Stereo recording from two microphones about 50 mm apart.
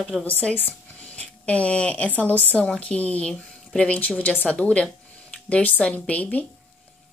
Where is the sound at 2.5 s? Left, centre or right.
Left.